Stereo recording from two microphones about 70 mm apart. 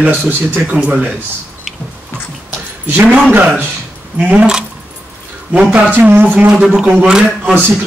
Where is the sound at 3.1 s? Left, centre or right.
Centre.